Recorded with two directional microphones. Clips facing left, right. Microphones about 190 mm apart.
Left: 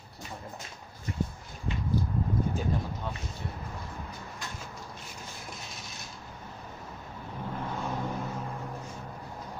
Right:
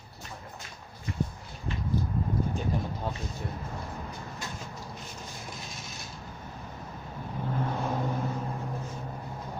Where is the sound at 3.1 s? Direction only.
35° right (ahead or behind).